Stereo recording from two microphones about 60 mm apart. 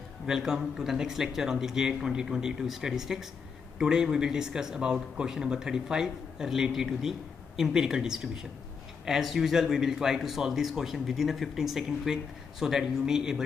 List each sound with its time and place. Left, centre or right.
0.3 s speech: centre